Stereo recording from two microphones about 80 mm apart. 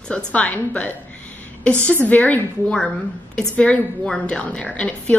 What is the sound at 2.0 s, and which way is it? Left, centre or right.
A woman's voice, centre.